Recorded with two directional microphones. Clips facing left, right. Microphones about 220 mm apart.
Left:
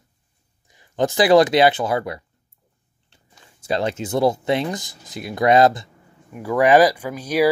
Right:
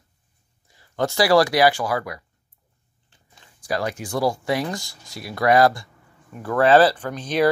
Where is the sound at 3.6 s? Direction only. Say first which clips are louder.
Left 3 dB; 25° left (ahead or behind); by 7.5 s 10° left (ahead or behind).